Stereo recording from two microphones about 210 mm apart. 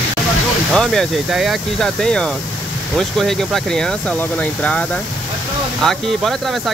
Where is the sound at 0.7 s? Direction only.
Centre (ahead or behind).